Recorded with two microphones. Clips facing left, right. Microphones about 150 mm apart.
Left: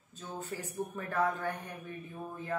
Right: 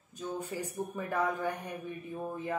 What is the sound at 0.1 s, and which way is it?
A woman's voice, 15° right (ahead or behind).